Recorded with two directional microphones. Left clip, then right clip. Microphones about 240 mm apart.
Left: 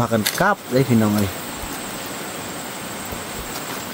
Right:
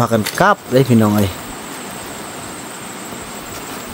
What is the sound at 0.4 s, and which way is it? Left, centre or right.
Speech, right.